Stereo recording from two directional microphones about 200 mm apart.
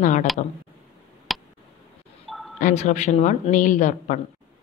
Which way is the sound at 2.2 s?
Centre (ahead or behind).